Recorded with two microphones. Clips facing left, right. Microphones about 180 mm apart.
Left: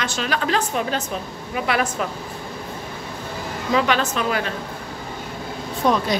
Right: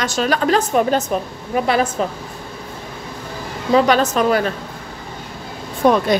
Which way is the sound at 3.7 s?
40° right (ahead or behind).